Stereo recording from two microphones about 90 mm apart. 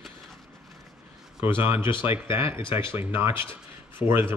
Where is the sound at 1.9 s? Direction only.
70° left (ahead or behind).